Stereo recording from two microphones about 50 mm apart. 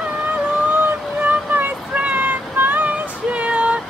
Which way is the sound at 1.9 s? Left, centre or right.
Right.